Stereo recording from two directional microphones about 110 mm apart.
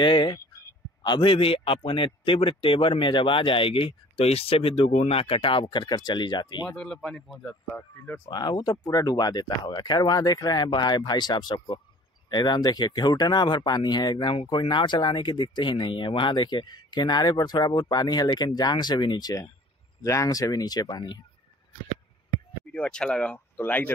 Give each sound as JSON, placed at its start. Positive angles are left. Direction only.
{"t": 0.0, "sound": "a man's voice", "side_deg": 45}
{"t": 6.8, "sound": "speech", "side_deg": 5}
{"t": 7.7, "sound": "speech", "side_deg": 15}
{"t": 8.3, "sound": "speech", "side_deg": 40}
{"t": 22.7, "sound": "speech", "side_deg": 10}